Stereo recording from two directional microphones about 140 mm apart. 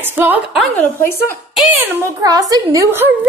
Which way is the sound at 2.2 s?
25° right (ahead or behind).